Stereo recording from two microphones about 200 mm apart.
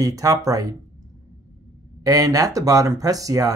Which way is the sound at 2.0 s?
15° right (ahead or behind).